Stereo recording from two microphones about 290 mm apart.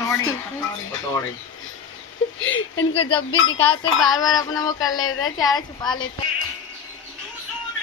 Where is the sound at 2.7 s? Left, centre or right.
Centre.